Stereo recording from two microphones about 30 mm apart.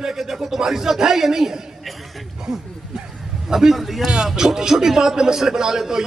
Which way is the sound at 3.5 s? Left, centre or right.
Centre.